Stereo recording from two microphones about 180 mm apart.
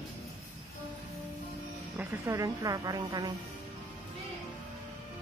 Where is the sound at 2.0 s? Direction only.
15° right (ahead or behind).